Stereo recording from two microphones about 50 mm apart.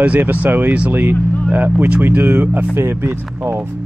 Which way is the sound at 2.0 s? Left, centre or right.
Right.